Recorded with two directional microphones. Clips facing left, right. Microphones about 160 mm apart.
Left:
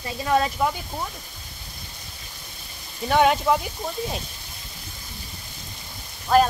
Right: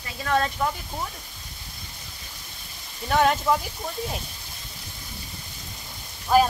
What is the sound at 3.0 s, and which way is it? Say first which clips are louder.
Speech: left 2 dB; 5° left (ahead or behind).